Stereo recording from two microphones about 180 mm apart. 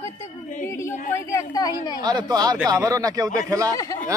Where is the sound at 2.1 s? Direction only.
20° right (ahead or behind).